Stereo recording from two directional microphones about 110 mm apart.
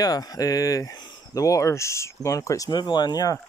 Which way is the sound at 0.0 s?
35° left (ahead or behind).